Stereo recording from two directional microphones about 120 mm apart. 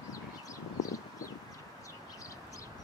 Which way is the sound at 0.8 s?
30° left (ahead or behind).